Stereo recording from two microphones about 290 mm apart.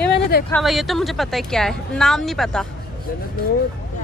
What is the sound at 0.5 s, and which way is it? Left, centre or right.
Speech, centre.